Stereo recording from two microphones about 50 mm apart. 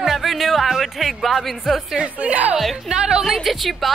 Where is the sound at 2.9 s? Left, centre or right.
Centre.